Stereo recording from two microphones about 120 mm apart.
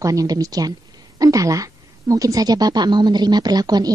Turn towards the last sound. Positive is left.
turn(degrees=-35)  # may be behind; listen again after turning